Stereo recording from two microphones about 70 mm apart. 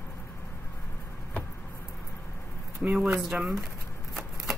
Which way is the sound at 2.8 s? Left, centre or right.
Centre.